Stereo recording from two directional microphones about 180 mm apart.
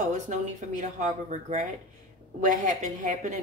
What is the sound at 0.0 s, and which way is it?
A woman's voice, 40° right (ahead or behind).